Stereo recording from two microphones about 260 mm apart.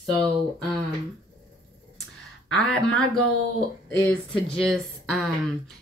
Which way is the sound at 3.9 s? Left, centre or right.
Centre.